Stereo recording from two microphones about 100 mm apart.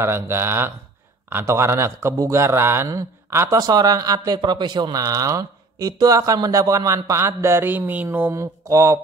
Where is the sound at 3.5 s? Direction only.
40° right (ahead or behind).